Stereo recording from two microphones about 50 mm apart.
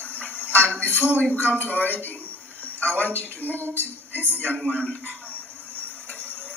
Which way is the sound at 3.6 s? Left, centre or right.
Left.